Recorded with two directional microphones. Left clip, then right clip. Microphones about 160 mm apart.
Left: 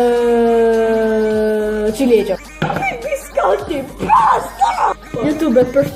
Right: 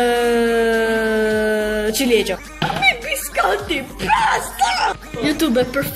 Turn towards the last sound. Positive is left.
turn(degrees=-5)  # may be behind; listen again after turning